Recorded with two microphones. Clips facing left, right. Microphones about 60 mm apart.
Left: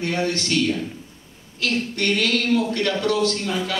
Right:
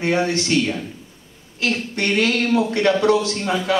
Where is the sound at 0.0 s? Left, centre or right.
Right.